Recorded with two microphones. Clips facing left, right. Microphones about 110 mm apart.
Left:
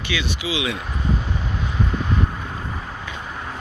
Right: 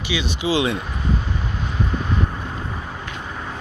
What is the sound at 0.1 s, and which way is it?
Speech, 20° right (ahead or behind).